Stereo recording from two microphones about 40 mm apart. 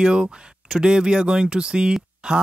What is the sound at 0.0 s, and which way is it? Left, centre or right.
Speech, right.